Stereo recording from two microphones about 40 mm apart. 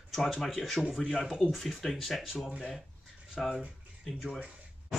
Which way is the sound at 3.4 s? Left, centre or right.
Centre.